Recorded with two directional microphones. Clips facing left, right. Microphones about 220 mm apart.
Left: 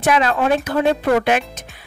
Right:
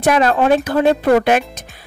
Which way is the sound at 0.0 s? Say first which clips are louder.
Right 3 dB; 40° right (ahead or behind).